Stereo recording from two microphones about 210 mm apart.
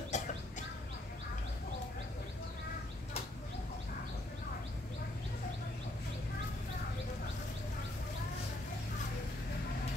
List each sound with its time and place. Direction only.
0.1 s bird: 35° left (ahead or behind)